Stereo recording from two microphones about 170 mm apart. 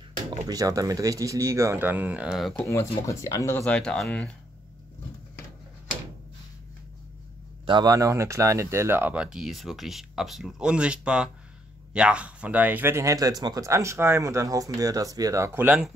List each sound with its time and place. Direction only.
0.5 s speech: 20° right (ahead or behind); by 2.5 s 5° right (ahead or behind)
2.5 s speech: 15° left (ahead or behind)
7.6 s speech: 25° right (ahead or behind); by 15.9 s 10° right (ahead or behind)